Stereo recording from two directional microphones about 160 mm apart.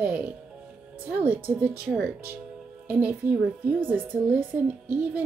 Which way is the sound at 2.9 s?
10° right (ahead or behind).